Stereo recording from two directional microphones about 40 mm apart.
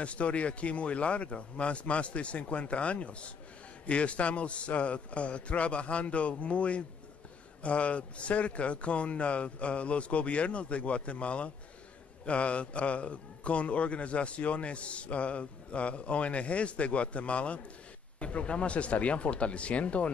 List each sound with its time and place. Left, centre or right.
0.0 s a man's voice: left